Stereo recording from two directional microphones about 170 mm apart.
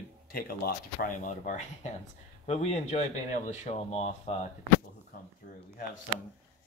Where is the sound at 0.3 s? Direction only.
60° left (ahead or behind); by 4.5 s 40° left (ahead or behind).